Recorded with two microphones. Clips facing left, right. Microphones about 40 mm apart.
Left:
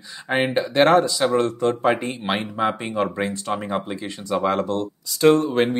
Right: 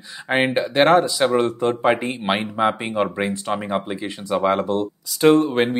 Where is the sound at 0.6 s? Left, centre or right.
Centre.